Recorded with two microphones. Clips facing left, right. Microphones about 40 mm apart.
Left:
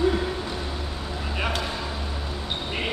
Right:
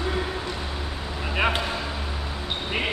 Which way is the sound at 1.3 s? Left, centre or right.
Right.